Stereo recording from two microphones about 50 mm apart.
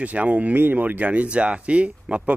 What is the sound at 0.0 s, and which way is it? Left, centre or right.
Speech, right.